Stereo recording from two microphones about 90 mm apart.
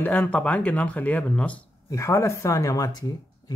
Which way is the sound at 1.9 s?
35° left (ahead or behind).